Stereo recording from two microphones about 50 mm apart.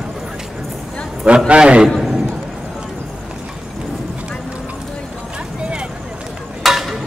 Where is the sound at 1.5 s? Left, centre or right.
Right.